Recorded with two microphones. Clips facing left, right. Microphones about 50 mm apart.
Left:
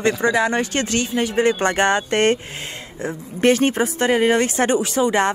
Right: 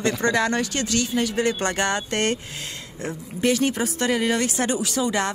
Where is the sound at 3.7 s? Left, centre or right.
Left.